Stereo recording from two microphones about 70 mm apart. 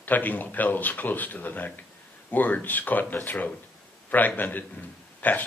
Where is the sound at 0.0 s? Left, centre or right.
Left.